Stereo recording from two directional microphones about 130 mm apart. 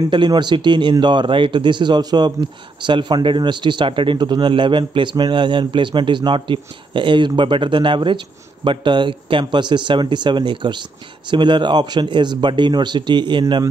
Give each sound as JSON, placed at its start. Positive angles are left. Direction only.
{"t": 0.1, "sound": "a man's voice", "side_deg": -35}